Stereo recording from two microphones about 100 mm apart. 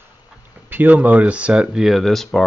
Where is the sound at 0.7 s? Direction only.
15° right (ahead or behind); by 2.4 s centre (ahead or behind).